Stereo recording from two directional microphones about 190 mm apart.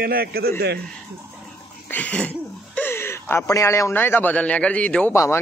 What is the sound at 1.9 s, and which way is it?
A man's voice, 10° left (ahead or behind).